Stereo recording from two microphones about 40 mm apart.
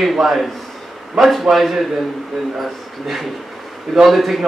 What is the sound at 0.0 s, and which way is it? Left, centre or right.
A man's voice, centre.